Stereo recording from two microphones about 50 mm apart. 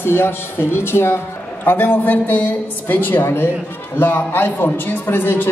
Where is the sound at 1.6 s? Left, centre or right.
Left.